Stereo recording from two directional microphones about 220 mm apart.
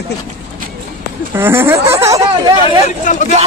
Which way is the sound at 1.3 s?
10° right (ahead or behind).